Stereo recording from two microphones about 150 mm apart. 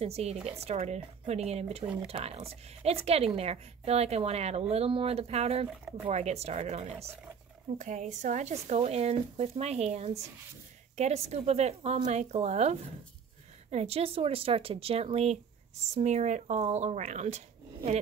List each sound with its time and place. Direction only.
0.0 s speech: 45° right (ahead or behind)
7.7 s speech: 55° right (ahead or behind)